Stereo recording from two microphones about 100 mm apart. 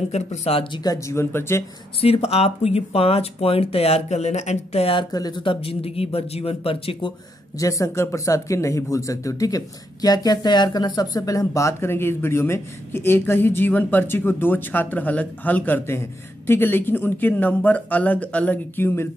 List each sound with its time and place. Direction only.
0.1 s speech: 85° left
0.8 s speech: 30° left (ahead or behind)
2.0 s speech: 75° left (ahead or behind)
5.1 s speech: 45° left (ahead or behind); by 7.1 s 65° left (ahead or behind)
7.5 s speech: 35° left (ahead or behind)